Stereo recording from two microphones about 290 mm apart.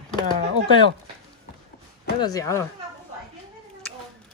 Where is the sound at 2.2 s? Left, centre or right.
Centre.